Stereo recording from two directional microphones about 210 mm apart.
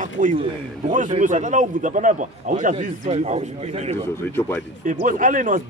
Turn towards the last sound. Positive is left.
turn(degrees=-40)  # may be behind; listen again after turning